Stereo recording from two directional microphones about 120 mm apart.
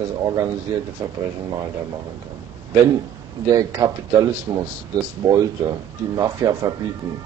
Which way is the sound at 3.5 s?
30° right (ahead or behind).